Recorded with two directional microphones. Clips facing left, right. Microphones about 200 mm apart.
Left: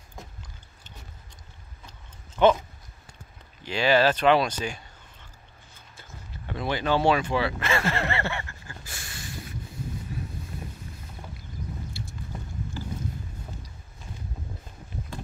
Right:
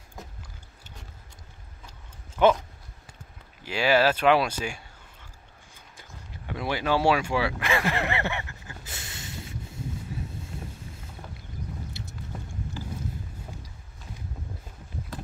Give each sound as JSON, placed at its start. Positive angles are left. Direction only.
{"t": 1.9, "sound": "keys jangling", "side_deg": -10}
{"t": 3.6, "sound": "speech", "side_deg": -10}
{"t": 5.9, "sound": "fowl", "side_deg": -10}
{"t": 10.1, "sound": "horse", "side_deg": -25}
{"t": 11.9, "sound": "a sound", "side_deg": -20}